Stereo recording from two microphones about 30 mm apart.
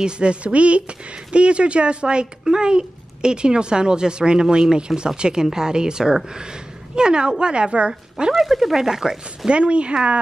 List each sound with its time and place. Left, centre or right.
0.0 s speech: right
8.4 s speech: centre
9.5 s speech: right